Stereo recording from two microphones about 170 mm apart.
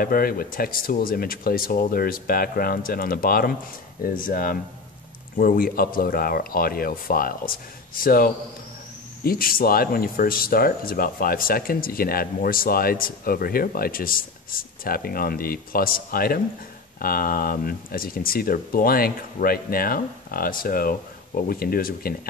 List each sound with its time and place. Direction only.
0.0 s speech: 60° left (ahead or behind)